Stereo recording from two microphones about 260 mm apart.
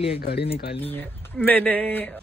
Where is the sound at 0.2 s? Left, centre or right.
Left.